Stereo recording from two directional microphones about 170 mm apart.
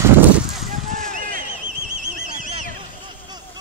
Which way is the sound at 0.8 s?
50° right (ahead or behind).